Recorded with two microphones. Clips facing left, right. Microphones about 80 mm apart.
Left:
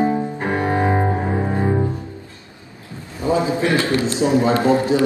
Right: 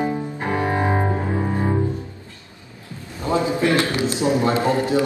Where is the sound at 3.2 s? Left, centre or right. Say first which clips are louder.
Left 2 dB; left.